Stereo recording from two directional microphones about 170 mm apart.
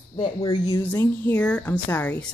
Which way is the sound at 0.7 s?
10° left (ahead or behind).